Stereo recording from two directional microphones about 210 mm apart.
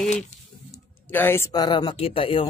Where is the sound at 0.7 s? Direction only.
10° left (ahead or behind); by 2.5 s 25° left (ahead or behind).